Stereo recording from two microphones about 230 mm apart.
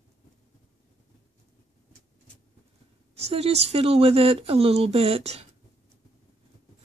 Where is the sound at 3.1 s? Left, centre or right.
Right.